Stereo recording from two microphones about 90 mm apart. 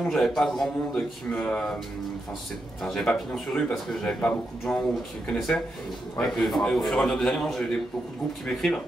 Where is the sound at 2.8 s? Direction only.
5° left (ahead or behind).